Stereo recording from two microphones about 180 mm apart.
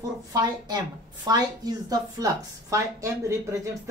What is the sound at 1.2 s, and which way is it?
A woman's voice, 20° right (ahead or behind).